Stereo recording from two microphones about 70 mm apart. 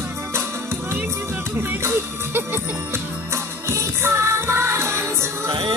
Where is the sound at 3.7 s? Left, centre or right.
Right.